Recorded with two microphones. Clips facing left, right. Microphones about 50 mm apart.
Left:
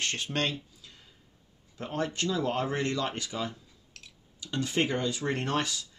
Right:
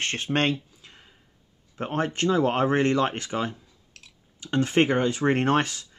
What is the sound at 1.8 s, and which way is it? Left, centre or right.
Speech, right.